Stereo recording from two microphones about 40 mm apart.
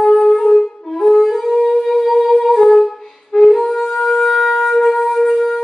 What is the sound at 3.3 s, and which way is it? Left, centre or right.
Music, centre.